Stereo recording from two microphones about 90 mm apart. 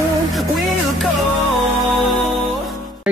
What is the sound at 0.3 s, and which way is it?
Music, centre (ahead or behind).